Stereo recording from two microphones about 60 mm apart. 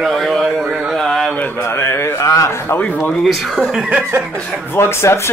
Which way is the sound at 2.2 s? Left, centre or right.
Left.